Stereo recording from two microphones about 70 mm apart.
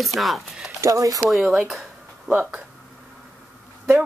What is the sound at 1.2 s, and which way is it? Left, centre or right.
Speech, centre.